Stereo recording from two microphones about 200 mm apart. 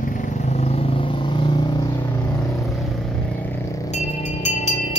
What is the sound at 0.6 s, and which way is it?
Vehicle, 30° left (ahead or behind).